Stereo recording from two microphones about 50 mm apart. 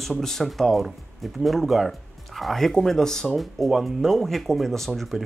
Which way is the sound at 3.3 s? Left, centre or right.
Centre.